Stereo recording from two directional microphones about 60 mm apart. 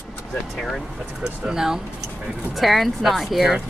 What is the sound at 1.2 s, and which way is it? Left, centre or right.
Speech, centre.